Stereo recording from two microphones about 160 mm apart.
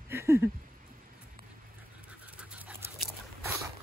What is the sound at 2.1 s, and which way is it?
Dog, 5° right (ahead or behind).